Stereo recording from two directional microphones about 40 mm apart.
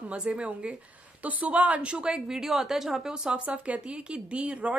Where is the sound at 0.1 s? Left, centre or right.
Right; by 3.3 s centre.